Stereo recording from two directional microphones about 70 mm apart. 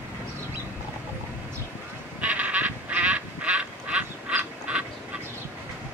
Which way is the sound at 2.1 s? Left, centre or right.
Right.